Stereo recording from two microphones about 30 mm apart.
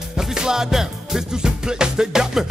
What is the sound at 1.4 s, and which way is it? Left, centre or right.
Music, right.